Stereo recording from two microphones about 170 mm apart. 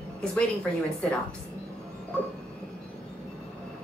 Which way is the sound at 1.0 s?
Centre (ahead or behind).